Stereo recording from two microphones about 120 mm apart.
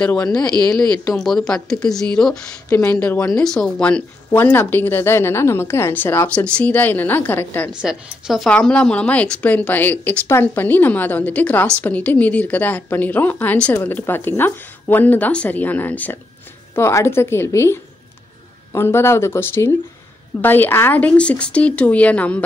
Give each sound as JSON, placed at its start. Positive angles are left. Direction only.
{"t": 0.3, "sound": "speech", "side_deg": 10}
{"t": 2.7, "sound": "speech", "side_deg": 15}
{"t": 7.7, "sound": "speech", "side_deg": -5}
{"t": 8.5, "sound": "speech", "side_deg": 10}